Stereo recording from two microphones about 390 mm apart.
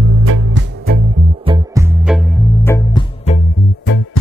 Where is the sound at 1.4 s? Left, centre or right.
Centre.